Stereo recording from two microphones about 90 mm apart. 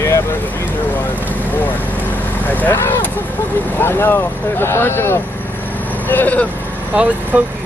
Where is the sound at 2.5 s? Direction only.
20° left (ahead or behind).